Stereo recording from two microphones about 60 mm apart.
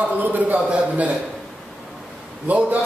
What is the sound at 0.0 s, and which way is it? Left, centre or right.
A man's voice, right.